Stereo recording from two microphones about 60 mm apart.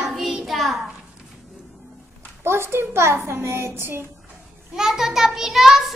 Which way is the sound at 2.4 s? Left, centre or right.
Right.